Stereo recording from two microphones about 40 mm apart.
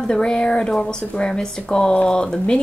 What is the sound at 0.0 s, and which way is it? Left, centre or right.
Speech, left.